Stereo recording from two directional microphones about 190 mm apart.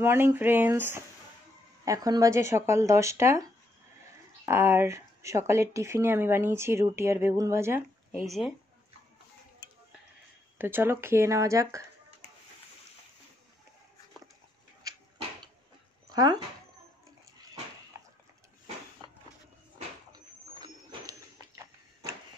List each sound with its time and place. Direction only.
0.0 s speech: 10° right (ahead or behind)
4.5 s speech: 10° right (ahead or behind)
8.3 s speech: centre (ahead or behind)
10.6 s speech: 10° right (ahead or behind)
14.8 s a sound: 20° right (ahead or behind)
16.1 s speech: 20° right (ahead or behind)
20.1 s a sound: 20° right (ahead or behind)